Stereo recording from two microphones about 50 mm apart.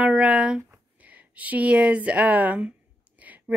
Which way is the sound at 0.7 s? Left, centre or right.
Right.